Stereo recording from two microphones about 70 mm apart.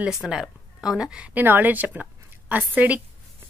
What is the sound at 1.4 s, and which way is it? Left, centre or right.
A woman's voice, right.